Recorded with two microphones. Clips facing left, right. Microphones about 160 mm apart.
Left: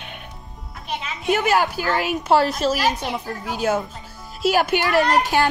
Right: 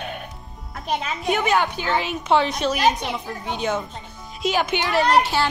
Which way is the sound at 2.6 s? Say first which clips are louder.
Left 2 dB; 30° left (ahead or behind).